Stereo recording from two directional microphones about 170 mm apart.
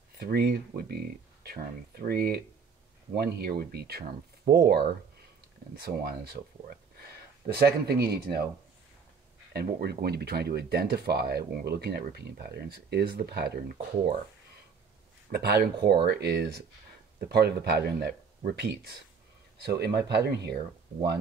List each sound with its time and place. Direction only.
0.2 s speech: 70° right (ahead or behind)
9.5 s speech: 70° right (ahead or behind)
15.3 s speech: 70° right (ahead or behind)